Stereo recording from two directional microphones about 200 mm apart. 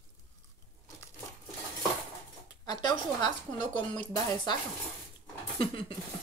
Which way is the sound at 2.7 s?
20° left (ahead or behind).